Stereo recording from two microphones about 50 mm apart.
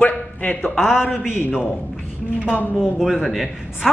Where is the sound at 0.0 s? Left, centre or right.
Left.